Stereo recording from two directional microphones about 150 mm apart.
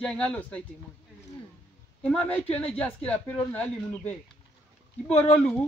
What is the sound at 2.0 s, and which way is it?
Speech, 10° left (ahead or behind).